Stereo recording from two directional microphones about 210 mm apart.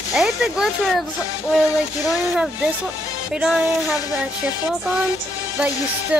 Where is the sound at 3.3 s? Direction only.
5° right (ahead or behind).